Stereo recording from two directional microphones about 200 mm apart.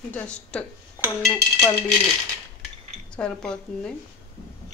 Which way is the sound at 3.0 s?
5° left (ahead or behind).